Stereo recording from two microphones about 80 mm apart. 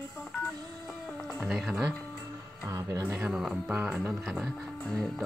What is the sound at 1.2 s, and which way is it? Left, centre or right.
Cat, centre.